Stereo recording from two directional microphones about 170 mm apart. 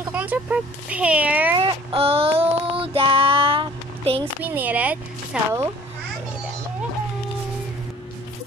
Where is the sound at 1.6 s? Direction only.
35° right (ahead or behind).